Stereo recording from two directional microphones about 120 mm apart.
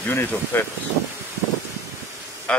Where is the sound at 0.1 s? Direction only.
20° left (ahead or behind).